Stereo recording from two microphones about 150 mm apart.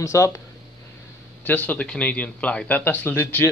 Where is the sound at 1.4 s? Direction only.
10° left (ahead or behind).